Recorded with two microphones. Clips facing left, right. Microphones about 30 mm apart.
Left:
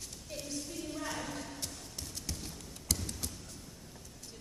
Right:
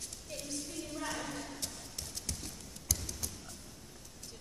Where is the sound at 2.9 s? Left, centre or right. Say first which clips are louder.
Left 2 dB; left.